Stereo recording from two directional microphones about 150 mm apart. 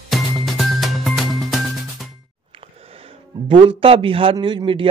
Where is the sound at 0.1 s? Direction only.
Centre (ahead or behind).